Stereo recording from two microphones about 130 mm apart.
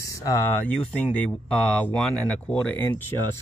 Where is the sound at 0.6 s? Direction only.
10° left (ahead or behind).